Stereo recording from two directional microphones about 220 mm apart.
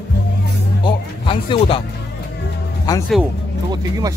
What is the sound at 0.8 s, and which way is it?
Music, 25° left (ahead or behind).